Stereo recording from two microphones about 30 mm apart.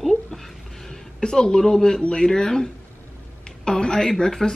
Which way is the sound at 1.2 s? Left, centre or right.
Left.